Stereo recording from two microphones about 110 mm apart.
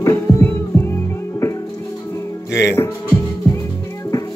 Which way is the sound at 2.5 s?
25° left (ahead or behind).